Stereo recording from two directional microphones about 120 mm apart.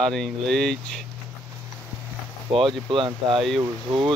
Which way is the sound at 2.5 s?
45° right (ahead or behind).